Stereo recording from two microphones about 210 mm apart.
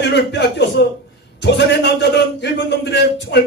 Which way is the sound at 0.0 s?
55° left (ahead or behind).